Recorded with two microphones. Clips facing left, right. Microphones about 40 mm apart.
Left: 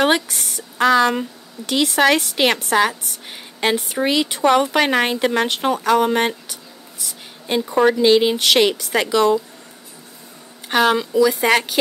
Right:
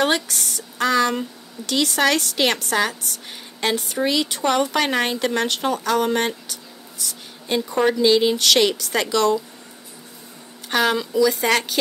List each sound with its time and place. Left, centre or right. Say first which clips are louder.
0.0 s a woman's voice: left 3 dB; centre
10.7 s speech: left 3 dB; centre